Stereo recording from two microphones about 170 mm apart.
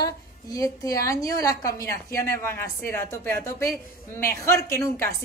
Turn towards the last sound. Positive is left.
turn(degrees=15)  # may be behind; listen again after turning